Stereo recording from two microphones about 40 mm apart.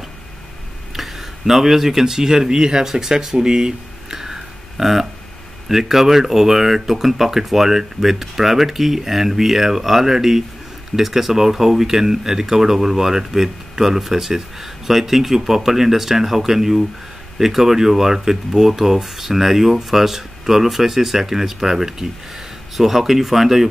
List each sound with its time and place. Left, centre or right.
0.9 s speech: centre
2.9 s a sound: centre
5.7 s speech: centre